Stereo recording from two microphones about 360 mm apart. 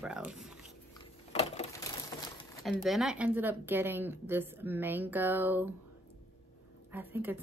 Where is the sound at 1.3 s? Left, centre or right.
Centre.